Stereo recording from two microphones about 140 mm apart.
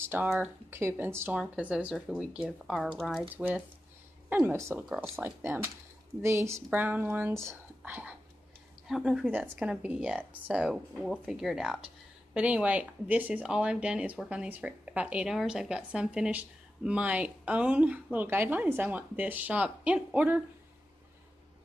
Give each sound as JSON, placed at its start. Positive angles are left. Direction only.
{"t": 0.1, "sound": "speech", "side_deg": -10}
{"t": 4.7, "sound": "speech", "side_deg": -5}
{"t": 5.1, "sound": "speech", "side_deg": -15}
{"t": 8.8, "sound": "speech", "side_deg": 0}